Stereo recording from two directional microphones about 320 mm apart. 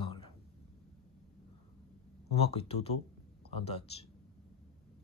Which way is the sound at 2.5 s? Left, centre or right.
Centre.